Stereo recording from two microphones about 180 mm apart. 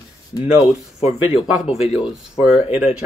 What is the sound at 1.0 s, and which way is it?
Speech, 40° left (ahead or behind).